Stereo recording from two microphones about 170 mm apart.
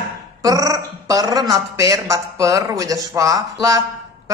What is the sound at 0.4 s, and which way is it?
Speech, 20° right (ahead or behind).